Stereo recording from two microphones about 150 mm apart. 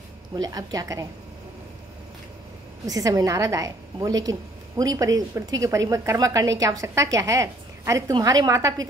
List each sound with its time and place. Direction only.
0.4 s a woman's voice: 25° right (ahead or behind)
2.9 s a woman's voice: 25° right (ahead or behind)